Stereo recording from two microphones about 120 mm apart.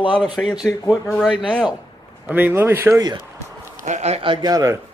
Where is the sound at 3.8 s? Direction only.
70° right (ahead or behind).